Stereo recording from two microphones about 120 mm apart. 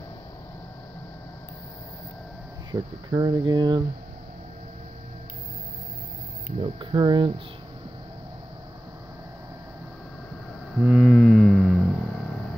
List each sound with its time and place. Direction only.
2.7 s speech: 35° right (ahead or behind)
6.6 s speech: 45° right (ahead or behind)
10.8 s a sound: 5° right (ahead or behind)